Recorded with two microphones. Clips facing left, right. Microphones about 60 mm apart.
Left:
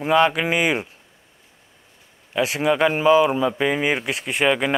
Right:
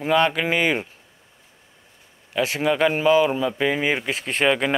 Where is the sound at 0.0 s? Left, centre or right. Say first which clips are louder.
Left 2 dB; centre.